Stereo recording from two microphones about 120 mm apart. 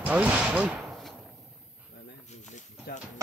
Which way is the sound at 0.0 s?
10° right (ahead or behind).